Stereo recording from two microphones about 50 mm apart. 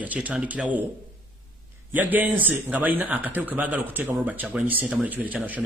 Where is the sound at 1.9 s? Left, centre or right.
Right.